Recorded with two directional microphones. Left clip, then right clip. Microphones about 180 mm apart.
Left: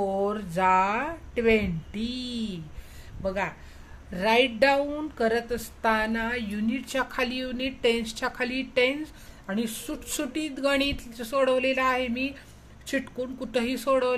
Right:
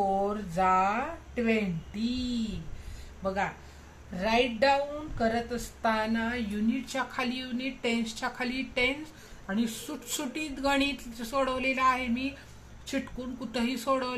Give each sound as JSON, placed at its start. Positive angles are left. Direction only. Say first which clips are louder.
{"t": 0.2, "sound": "speech", "louder": "left 3 dB", "side_deg": 50}
{"t": 4.1, "sound": "a woman's voice", "louder": "left 5 dB", "side_deg": 50}